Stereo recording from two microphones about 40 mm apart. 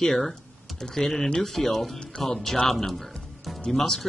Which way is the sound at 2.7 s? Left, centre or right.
Centre.